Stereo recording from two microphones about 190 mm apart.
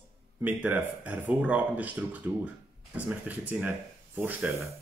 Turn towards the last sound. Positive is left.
turn(degrees=-10)  # may be behind; listen again after turning